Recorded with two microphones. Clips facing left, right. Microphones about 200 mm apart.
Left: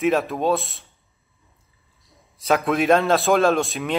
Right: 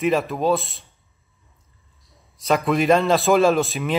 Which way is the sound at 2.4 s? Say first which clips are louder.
Even; centre (ahead or behind).